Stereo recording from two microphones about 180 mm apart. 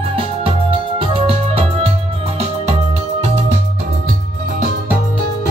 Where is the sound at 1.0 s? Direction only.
30° right (ahead or behind).